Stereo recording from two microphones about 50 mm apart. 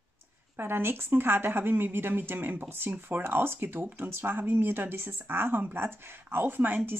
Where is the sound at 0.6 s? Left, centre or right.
Right.